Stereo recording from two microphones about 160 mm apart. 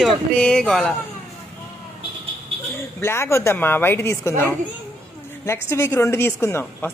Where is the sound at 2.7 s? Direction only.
15° left (ahead or behind).